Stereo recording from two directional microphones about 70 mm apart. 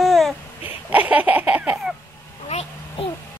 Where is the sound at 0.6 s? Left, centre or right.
Right.